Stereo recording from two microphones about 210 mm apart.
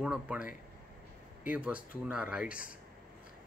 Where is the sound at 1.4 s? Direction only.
5° right (ahead or behind).